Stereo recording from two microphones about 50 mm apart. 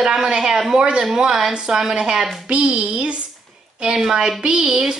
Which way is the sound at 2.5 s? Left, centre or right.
Right.